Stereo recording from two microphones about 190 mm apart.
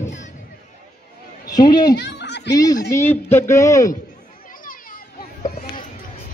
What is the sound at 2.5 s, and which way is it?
Speech, 20° left (ahead or behind).